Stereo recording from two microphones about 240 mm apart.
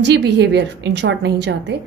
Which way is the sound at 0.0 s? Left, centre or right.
Right.